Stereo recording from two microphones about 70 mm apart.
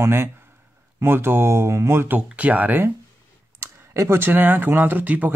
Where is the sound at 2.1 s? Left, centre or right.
Centre.